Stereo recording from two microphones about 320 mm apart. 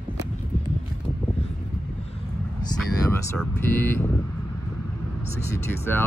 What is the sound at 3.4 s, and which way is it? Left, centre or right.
Speech, centre.